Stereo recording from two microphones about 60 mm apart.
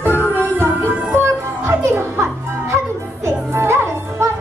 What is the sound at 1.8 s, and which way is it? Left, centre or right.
Music, right.